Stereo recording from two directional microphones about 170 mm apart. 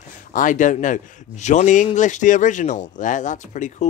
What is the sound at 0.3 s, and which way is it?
Speech, 50° left (ahead or behind).